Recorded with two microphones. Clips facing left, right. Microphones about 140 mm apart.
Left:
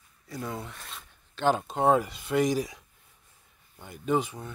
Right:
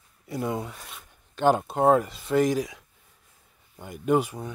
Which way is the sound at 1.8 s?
Centre (ahead or behind).